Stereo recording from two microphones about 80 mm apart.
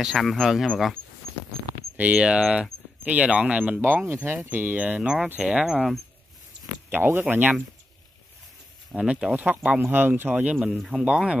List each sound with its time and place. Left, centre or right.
0.0 s speech: centre
2.0 s speech: centre
6.9 s speech: right
8.9 s speech: centre
10.8 s speech: centre